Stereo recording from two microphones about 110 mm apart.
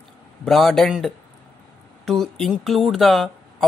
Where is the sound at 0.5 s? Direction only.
5° left (ahead or behind).